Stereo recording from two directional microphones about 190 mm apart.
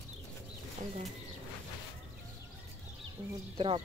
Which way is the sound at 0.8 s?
40° right (ahead or behind).